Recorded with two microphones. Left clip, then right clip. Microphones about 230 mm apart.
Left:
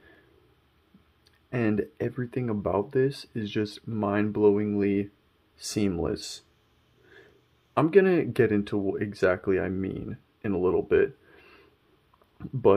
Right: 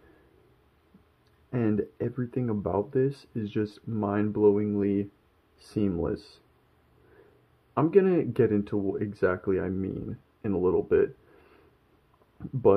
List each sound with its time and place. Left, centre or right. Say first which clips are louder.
1.5 s speech: left 1 dB; centre
7.7 s speech: left 2 dB; centre